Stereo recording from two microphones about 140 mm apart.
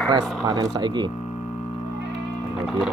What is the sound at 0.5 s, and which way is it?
Speech, 30° right (ahead or behind).